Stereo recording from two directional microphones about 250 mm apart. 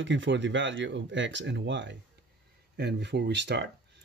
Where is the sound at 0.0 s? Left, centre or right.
Right.